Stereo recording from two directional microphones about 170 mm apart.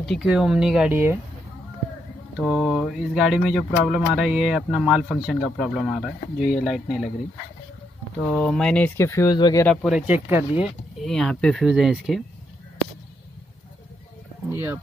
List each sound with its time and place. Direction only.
0.0 s speech: centre (ahead or behind)
2.3 s speech: 5° right (ahead or behind)
8.3 s speech: 5° left (ahead or behind); by 9.7 s 25° left (ahead or behind)
9.7 s speech: centre (ahead or behind)
10.6 s speech: centre (ahead or behind)
14.5 s speech: 15° right (ahead or behind)